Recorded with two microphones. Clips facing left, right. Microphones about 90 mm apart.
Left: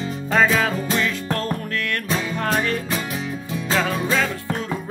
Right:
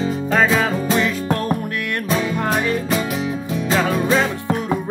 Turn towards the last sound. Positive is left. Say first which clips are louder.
# right 5 dB
turn(degrees=-20)  # may be behind; listen again after turning